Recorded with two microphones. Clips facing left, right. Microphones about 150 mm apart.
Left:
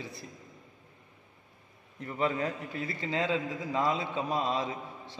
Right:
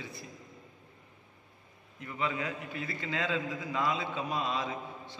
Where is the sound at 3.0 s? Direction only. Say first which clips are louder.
Left 3 dB; 25° left (ahead or behind).